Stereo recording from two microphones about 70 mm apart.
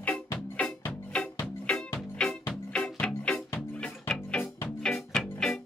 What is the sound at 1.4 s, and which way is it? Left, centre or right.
Music, centre.